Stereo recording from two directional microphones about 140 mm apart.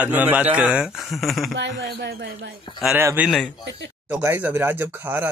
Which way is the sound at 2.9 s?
15° right (ahead or behind).